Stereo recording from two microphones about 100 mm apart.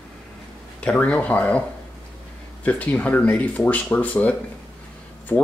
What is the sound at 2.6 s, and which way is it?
Speech, 15° left (ahead or behind).